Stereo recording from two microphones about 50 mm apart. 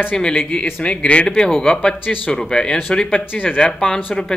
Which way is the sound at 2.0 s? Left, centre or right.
Left.